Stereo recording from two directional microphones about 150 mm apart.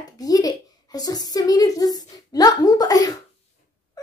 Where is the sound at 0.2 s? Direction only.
25° left (ahead or behind).